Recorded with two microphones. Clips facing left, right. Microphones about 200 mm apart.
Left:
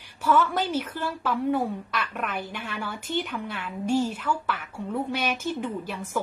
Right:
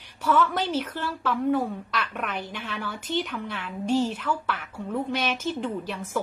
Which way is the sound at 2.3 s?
50° left (ahead or behind).